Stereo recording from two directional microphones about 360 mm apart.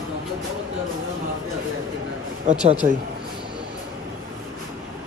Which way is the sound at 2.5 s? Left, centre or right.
Right.